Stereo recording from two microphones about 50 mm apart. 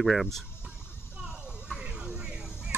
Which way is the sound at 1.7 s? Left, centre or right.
Centre.